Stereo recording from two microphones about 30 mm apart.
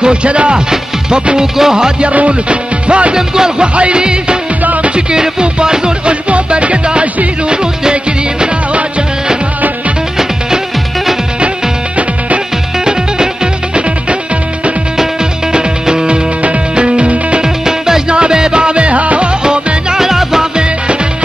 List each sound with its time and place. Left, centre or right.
0.0 s music: right
1.4 s music: right
2.1 s music: right
3.2 s music: right
3.6 s music: right
5.4 s music: right
6.2 s music: right
7.4 s music of bollywood: right
12.8 s music: right
15.5 s music: right
17.4 s music: centre
18.0 s music: right
19.4 s music: right
20.0 s music: centre